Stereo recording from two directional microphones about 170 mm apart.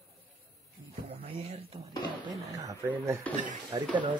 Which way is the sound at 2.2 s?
20° right (ahead or behind).